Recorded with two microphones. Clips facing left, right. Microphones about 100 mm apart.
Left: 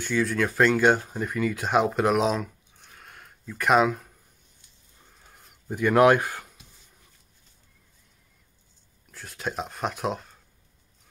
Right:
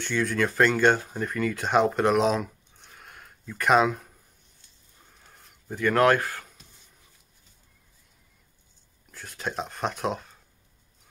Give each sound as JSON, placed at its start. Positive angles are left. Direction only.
{"t": 0.0, "sound": "speech", "side_deg": 0}
{"t": 5.3, "sound": "a sound", "side_deg": 5}
{"t": 5.8, "sound": "speech", "side_deg": 15}
{"t": 9.1, "sound": "speech", "side_deg": 0}